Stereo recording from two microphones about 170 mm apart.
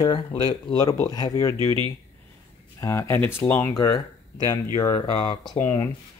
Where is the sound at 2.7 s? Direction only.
15° left (ahead or behind).